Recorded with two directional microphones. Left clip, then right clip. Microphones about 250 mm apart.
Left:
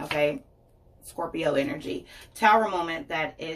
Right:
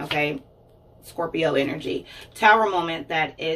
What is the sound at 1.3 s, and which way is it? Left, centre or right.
Speech, centre.